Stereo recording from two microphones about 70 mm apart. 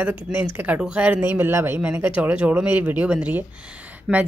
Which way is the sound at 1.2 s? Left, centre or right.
Right.